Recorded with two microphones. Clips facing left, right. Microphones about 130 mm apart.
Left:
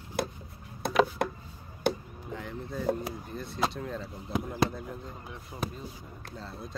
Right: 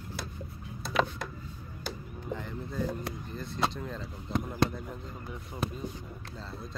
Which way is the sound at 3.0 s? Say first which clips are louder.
Left 1 dB; 5° left (ahead or behind).